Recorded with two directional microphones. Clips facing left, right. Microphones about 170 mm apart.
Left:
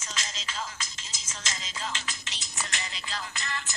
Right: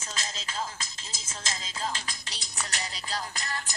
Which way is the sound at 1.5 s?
35° right (ahead or behind).